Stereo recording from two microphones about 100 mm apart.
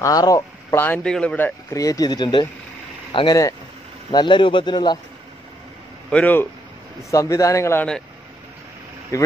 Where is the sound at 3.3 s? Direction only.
35° left (ahead or behind).